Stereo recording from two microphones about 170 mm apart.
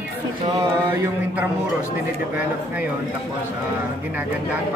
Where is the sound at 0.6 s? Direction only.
15° right (ahead or behind).